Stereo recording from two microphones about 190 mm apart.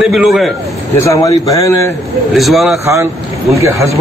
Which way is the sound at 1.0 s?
15° left (ahead or behind).